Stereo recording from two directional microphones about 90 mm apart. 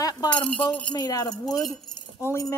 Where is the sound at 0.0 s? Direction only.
50° left (ahead or behind).